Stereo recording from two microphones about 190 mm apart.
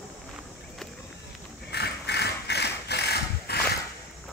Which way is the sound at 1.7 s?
60° left (ahead or behind).